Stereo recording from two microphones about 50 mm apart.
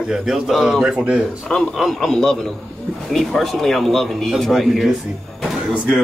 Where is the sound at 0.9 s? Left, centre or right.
Right.